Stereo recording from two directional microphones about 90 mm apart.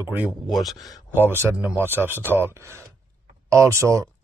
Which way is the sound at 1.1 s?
25° right (ahead or behind).